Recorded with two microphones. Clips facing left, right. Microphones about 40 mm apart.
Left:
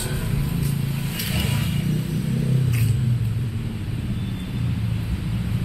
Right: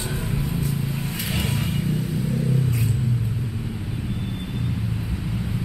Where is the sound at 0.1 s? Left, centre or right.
Centre.